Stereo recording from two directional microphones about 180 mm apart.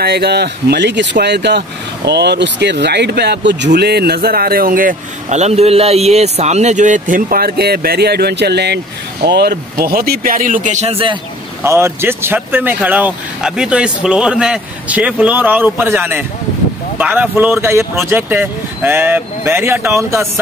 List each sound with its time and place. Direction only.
0.0 s speech: 65° right (ahead or behind); by 11.1 s 30° right (ahead or behind)
11.6 s speech: 15° right (ahead or behind)